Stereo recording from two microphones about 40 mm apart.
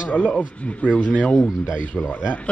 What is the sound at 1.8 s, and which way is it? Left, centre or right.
Speech, left.